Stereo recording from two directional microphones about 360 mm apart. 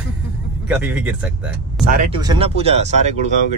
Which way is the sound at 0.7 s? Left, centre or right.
Centre.